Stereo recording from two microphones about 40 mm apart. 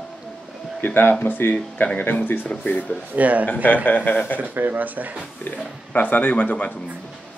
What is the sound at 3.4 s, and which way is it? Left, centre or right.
Speech, left.